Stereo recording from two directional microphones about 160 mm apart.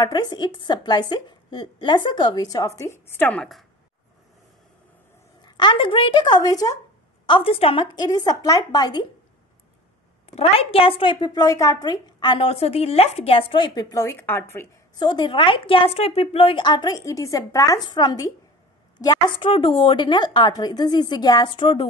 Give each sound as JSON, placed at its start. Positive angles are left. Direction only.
{"t": 0.0, "sound": "a woman's voice", "side_deg": 25}
{"t": 5.4, "sound": "a woman's voice", "side_deg": 30}
{"t": 7.2, "sound": "a woman's voice", "side_deg": 35}
{"t": 10.2, "sound": "a woman's voice", "side_deg": 40}
{"t": 15.0, "sound": "a woman's voice", "side_deg": 30}